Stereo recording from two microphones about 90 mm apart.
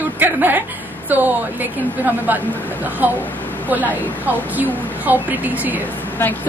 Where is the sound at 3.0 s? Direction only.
20° right (ahead or behind).